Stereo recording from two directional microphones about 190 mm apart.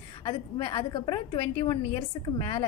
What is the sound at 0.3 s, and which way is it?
A woman's voice, 25° left (ahead or behind).